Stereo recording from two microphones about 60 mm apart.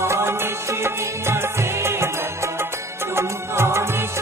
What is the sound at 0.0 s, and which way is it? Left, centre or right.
Music, right.